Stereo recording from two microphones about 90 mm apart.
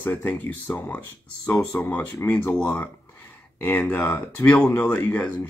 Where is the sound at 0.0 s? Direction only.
20° left (ahead or behind).